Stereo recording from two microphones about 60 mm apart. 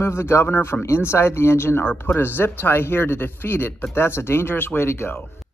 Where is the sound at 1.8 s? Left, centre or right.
Left.